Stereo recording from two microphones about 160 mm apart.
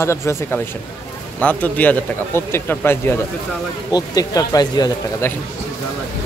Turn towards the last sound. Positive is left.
turn(degrees=25)  # may be behind; listen again after turning